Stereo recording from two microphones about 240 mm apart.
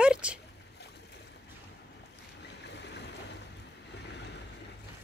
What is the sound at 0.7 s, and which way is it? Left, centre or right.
Boat, left.